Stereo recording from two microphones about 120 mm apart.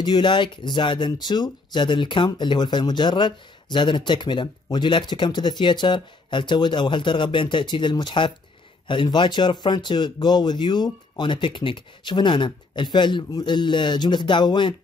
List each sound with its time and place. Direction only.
0.0 s speech: 40° left (ahead or behind)